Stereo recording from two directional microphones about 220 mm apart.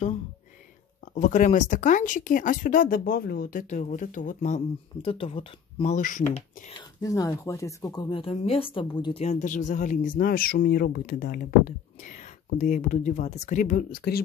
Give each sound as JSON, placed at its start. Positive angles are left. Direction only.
{"t": 1.0, "sound": "speech", "side_deg": 35}
{"t": 5.0, "sound": "speech", "side_deg": 25}
{"t": 6.8, "sound": "speech", "side_deg": 15}